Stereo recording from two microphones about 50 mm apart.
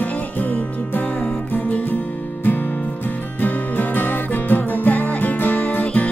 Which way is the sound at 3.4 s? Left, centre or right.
Left.